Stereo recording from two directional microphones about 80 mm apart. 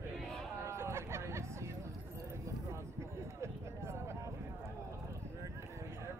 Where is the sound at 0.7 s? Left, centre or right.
Right.